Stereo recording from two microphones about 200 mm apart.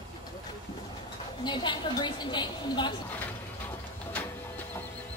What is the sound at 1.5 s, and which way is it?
A woman's voice, 25° left (ahead or behind).